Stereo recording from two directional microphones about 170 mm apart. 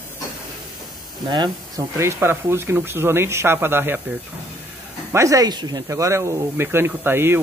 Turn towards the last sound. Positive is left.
turn(degrees=-15)  # may be behind; listen again after turning